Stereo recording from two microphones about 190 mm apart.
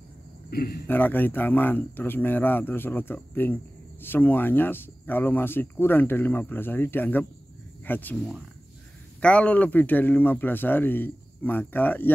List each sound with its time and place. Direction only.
0.5 s a man's voice: 55° left (ahead or behind)
0.8 s speech: 10° left (ahead or behind)
9.2 s speech: 5° left (ahead or behind)